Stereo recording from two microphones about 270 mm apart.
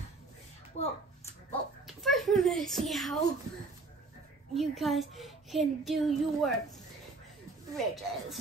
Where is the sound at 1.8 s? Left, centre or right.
Centre.